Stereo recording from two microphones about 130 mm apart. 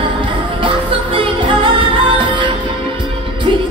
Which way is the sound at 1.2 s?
40° right (ahead or behind).